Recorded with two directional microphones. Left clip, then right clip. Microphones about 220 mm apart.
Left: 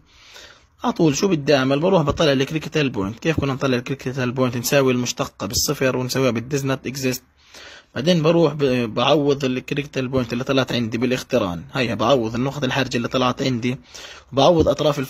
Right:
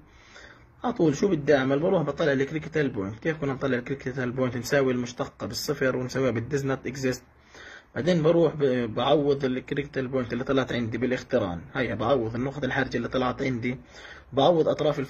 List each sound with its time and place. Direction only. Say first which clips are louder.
0.8 s a man's voice: left 5 dB; 35° left (ahead or behind)